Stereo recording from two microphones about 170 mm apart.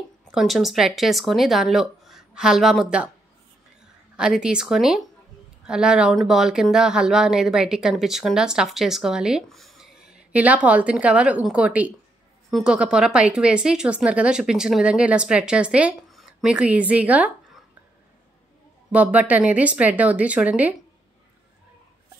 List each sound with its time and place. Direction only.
0.3 s speech: centre (ahead or behind)
18.9 s speech: 10° right (ahead or behind)